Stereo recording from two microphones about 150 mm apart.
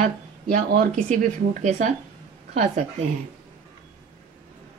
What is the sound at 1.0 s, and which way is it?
A woman's voice, 55° right (ahead or behind).